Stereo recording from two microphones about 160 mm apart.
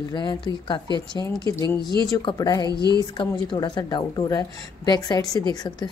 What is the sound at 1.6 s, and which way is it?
A woman's voice, 20° left (ahead or behind).